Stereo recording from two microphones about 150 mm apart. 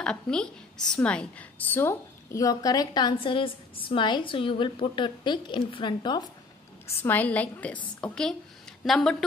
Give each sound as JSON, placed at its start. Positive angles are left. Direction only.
{"t": 0.0, "sound": "a woman's voice", "side_deg": 5}
{"t": 7.0, "sound": "a woman's voice", "side_deg": 10}